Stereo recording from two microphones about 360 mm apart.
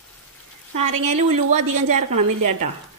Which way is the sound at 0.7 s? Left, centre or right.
Right.